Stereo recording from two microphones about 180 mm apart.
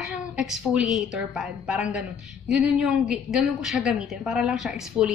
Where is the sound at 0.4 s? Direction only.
Centre (ahead or behind).